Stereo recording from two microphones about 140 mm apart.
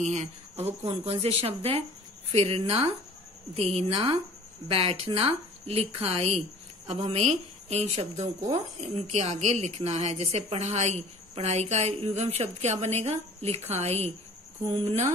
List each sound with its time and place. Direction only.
0.0 s speech: 55° right (ahead or behind)
0.8 s a woman's voice: 45° right (ahead or behind)
3.9 s speech: 30° right (ahead or behind)
4.6 s a woman's voice: 45° right (ahead or behind)